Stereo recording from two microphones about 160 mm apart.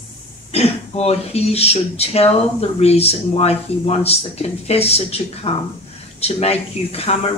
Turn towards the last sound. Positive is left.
turn(degrees=40)  # may be behind; listen again after turning